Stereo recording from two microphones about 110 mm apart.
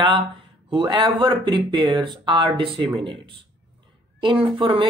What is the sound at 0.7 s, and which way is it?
Speech, 45° right (ahead or behind).